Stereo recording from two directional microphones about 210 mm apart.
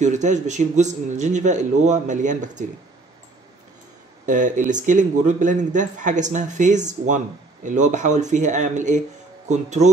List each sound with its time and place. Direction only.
0.0 s a man's voice: 35° right (ahead or behind)
4.3 s a man's voice: 35° right (ahead or behind)